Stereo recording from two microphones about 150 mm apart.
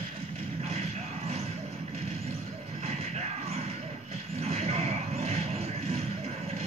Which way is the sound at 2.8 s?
45° right (ahead or behind).